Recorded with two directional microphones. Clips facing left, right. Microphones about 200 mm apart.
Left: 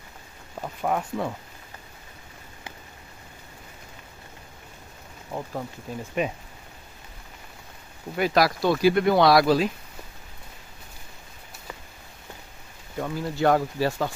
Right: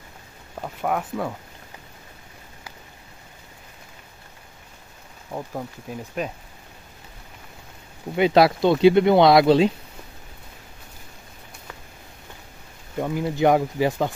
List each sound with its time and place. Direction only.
0.6 s speech: 5° right (ahead or behind)
5.3 s speech: 10° right (ahead or behind)
8.2 s speech: 25° right (ahead or behind)
13.0 s speech: 15° right (ahead or behind)